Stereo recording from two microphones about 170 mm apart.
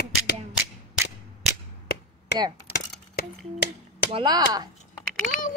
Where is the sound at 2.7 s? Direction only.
70° left (ahead or behind).